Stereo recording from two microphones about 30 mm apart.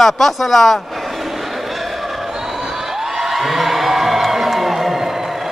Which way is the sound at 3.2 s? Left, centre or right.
Centre.